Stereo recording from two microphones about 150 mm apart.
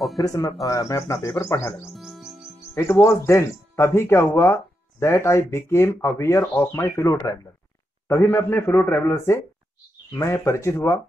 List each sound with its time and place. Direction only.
0.2 s speech: 20° left (ahead or behind)
2.0 s music: centre (ahead or behind)
2.7 s speech: 20° left (ahead or behind)